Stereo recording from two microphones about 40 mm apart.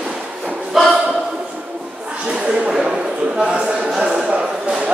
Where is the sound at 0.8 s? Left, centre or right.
Centre.